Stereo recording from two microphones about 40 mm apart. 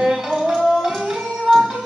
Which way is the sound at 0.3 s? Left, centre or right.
Centre.